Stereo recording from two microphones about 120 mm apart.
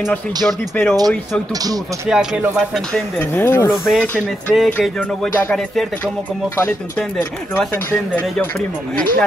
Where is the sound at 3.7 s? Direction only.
Centre (ahead or behind).